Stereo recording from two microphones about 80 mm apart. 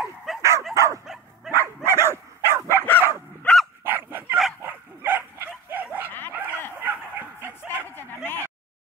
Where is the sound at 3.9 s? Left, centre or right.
Right.